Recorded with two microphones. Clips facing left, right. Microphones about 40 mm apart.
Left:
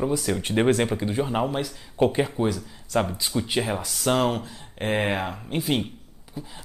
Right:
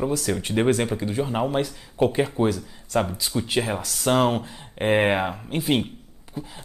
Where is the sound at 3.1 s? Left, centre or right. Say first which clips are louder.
Even; centre.